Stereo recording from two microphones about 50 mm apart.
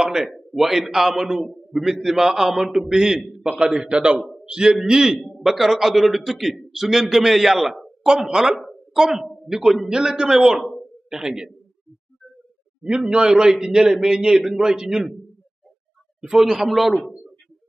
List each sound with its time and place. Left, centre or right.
0.0 s a sound: centre
0.3 s a man's voice: centre
3.5 s a man's voice: right; by 8.1 s centre
8.1 s a man's voice: centre
10.6 s a sound: centre
11.1 s a man's voice: centre
12.8 s a man's voice: centre
16.2 s a man's voice: centre